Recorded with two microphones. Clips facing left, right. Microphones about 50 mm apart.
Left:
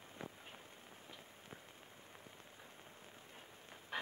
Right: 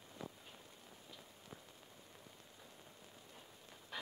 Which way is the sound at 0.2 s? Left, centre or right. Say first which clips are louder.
Even; left.